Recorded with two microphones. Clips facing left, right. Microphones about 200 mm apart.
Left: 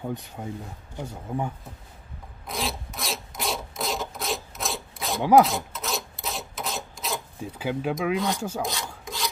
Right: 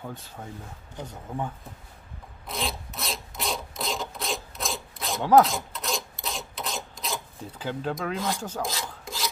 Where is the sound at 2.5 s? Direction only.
Centre (ahead or behind).